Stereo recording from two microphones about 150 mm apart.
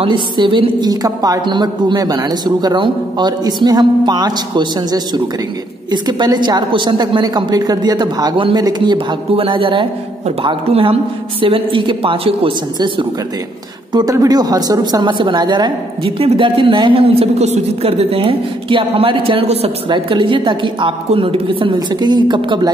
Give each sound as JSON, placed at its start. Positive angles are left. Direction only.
{"t": 0.0, "sound": "a woman's voice", "side_deg": -30}